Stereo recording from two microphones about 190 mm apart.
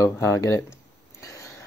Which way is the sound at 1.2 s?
15° left (ahead or behind).